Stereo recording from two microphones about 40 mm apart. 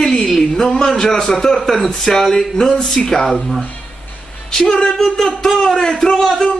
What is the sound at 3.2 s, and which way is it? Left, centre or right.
Speech, centre.